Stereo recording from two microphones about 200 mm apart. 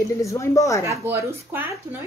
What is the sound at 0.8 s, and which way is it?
Speech, 15° right (ahead or behind).